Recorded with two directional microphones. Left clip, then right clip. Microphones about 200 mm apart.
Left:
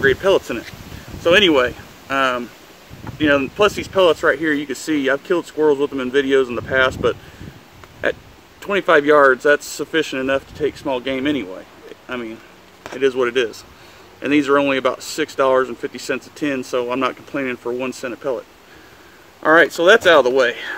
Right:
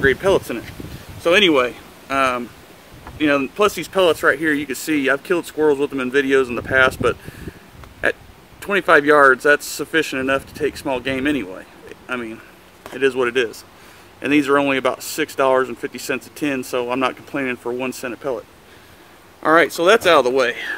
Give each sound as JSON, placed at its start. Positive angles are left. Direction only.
{"t": 0.0, "sound": "speech", "side_deg": -15}
{"t": 19.4, "sound": "speech", "side_deg": -15}